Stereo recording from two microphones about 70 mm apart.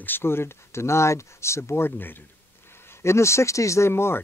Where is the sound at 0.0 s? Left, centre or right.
Left.